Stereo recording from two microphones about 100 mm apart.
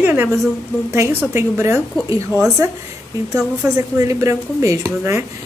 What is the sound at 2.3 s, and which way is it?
Speech, 5° right (ahead or behind).